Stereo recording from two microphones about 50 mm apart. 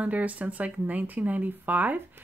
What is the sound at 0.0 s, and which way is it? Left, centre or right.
Speech, right.